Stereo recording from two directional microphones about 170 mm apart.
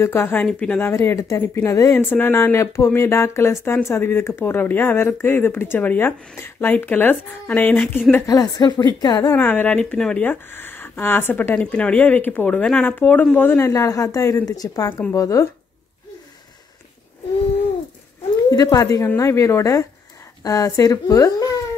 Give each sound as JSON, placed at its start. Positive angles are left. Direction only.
{"t": 0.0, "sound": "speech", "side_deg": 15}
{"t": 8.3, "sound": "a woman's voice", "side_deg": 20}
{"t": 9.4, "sound": "a woman's voice", "side_deg": 10}
{"t": 18.5, "sound": "a woman's voice", "side_deg": 20}